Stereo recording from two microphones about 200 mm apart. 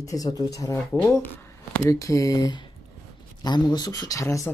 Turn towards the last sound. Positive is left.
turn(degrees=15)  # may be behind; listen again after turning